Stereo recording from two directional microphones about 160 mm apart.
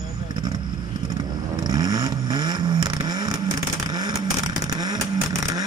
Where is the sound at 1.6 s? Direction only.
25° right (ahead or behind).